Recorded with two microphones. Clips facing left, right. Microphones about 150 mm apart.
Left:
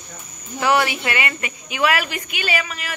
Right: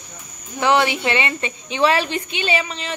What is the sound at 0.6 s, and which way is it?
A woman's voice, 20° right (ahead or behind).